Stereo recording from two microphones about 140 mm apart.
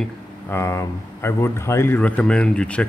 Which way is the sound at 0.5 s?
20° left (ahead or behind).